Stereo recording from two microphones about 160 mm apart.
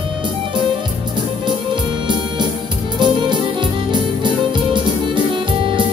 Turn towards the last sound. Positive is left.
turn(degrees=-30)  # may be behind; listen again after turning